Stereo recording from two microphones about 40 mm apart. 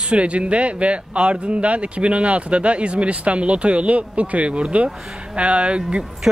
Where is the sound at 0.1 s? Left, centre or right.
Right.